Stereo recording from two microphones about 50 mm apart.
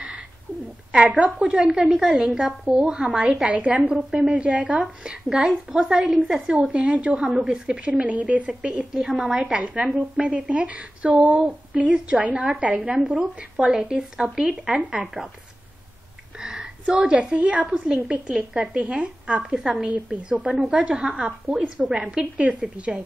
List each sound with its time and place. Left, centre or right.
0.9 s a woman's voice: centre
6.1 s a woman's voice: centre
6.7 s a woman's voice: right
7.2 s a woman's voice: centre
7.5 s a woman's voice: right
13.0 s a woman's voice: centre
16.3 s a sound: centre
17.6 s a woman's voice: centre
18.8 s a woman's voice: right
19.5 s a woman's voice: centre
19.9 s a woman's voice: right